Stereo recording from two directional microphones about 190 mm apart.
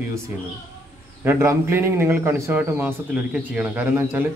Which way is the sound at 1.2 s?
15° right (ahead or behind).